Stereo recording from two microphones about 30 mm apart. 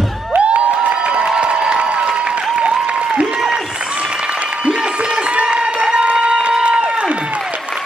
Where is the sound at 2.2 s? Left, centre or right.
Right.